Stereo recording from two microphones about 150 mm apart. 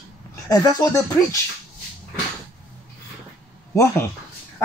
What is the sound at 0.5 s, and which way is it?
Speech, 20° left (ahead or behind).